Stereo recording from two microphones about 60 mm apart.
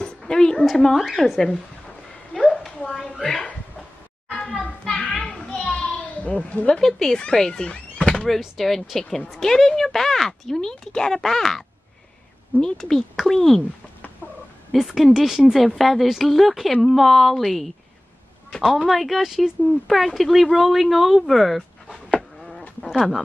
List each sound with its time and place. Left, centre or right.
0.0 s a sound: centre
0.7 s speech: centre
2.3 s a sound: centre
4.3 s children playing: centre
5.2 s a sound: centre
6.9 s speech: centre
8.3 s speech: centre
14.7 s speech: centre
18.9 s speech: centre
22.9 s speech: centre